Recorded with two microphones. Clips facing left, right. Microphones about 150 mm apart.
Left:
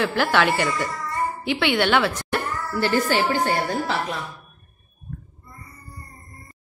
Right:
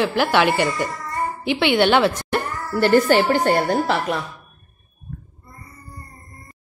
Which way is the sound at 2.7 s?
55° right (ahead or behind).